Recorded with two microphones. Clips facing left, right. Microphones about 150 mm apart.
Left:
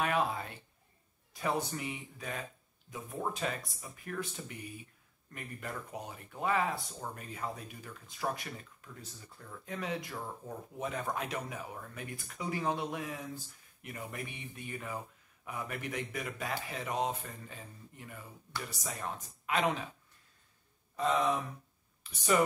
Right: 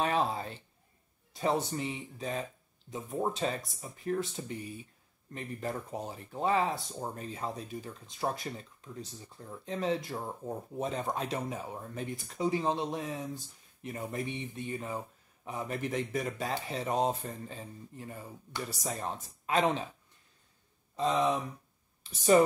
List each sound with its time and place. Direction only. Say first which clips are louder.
0.0 s speech: right 2 dB; 30° right (ahead or behind)
20.9 s speech: right 2 dB; 25° right (ahead or behind)